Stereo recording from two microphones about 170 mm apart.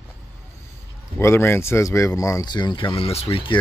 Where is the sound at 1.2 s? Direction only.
15° left (ahead or behind); by 3.6 s 30° left (ahead or behind).